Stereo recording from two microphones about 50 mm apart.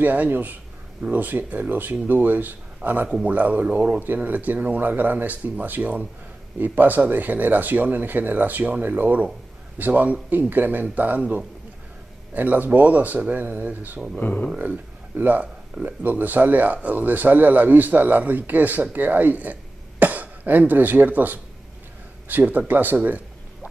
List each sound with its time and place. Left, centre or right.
0.0 s speech: right
3.1 s a man's voice: right
4.0 s speech: right